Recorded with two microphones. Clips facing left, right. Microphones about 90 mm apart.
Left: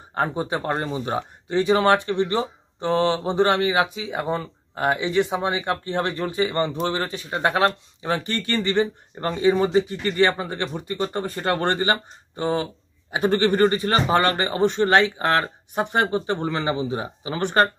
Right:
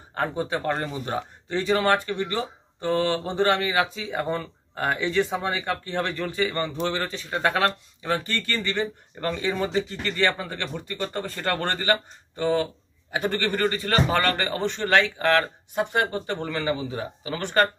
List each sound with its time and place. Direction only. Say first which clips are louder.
0.1 s speech: left 2 dB; 20° left (ahead or behind)